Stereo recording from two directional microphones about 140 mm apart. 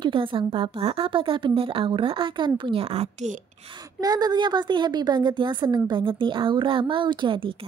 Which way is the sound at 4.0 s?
25° right (ahead or behind).